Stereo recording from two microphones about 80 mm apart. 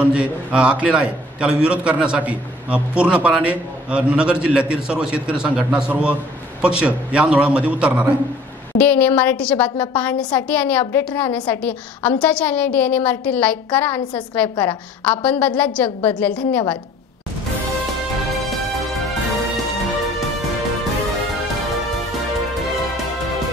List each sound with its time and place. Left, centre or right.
0.0 s a man's voice: centre
8.7 s a woman's voice: centre